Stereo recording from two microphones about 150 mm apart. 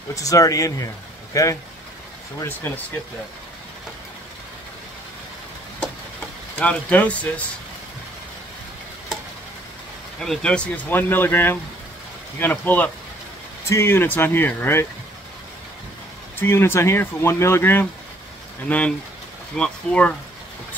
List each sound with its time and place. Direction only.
0.1 s speech: 20° left (ahead or behind)
6.6 s speech: 10° left (ahead or behind)
10.2 s speech: 5° left (ahead or behind)
16.3 s speech: 15° left (ahead or behind)